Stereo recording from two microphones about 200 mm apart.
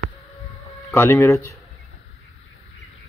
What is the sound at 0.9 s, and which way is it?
Speech, 15° left (ahead or behind).